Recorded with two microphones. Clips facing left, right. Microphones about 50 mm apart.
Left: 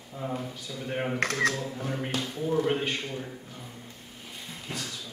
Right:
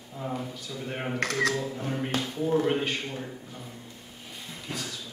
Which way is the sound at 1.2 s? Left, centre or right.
Left.